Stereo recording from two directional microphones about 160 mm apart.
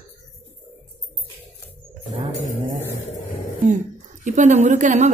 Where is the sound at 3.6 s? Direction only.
50° right (ahead or behind).